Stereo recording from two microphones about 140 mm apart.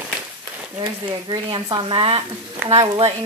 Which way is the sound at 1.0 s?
35° right (ahead or behind).